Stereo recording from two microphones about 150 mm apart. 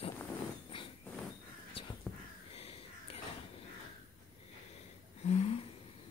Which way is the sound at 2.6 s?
40° left (ahead or behind).